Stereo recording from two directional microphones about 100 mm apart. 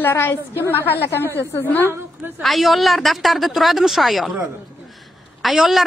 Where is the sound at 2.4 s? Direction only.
Centre (ahead or behind).